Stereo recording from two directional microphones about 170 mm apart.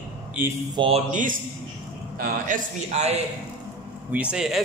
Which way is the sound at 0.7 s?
30° right (ahead or behind).